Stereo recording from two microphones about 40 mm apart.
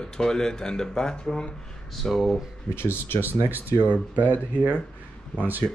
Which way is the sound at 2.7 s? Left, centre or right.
Left.